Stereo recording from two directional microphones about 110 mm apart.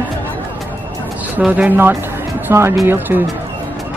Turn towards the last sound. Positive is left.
turn(degrees=-20)  # may be behind; listen again after turning